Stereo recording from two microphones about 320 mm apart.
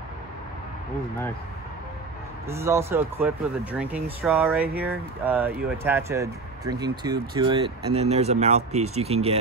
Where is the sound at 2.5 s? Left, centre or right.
Centre.